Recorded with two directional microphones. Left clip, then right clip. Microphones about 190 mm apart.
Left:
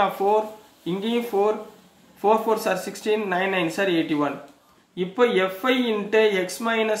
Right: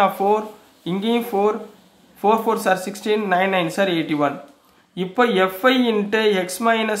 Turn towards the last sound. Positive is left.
turn(degrees=-40)  # may be behind; listen again after turning